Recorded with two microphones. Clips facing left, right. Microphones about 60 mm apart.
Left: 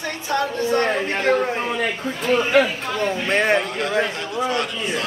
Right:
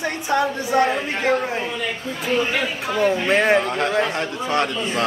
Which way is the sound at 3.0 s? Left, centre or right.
Centre.